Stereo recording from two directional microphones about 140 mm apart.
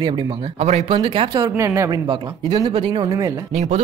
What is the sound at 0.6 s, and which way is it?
Speech, 50° right (ahead or behind).